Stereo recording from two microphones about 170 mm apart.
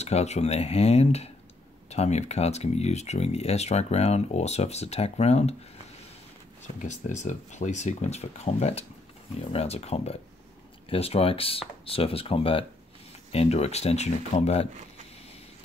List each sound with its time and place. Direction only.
0.0 s speech: 40° left (ahead or behind)
6.8 s speech: 45° left (ahead or behind)